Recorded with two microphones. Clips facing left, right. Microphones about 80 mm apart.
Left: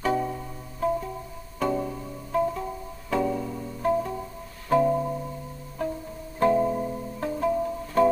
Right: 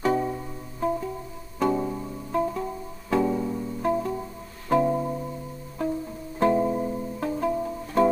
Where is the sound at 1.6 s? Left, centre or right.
Centre.